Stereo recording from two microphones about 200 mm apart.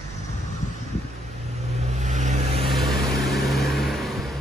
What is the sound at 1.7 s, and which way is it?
Vehicle, 35° right (ahead or behind).